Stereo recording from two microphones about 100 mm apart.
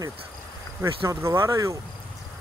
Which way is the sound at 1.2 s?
30° right (ahead or behind).